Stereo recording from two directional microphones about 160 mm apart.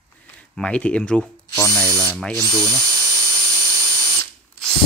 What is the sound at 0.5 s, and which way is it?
Speech, 5° left (ahead or behind).